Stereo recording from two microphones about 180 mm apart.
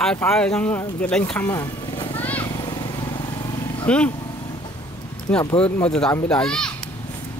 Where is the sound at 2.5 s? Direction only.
25° left (ahead or behind).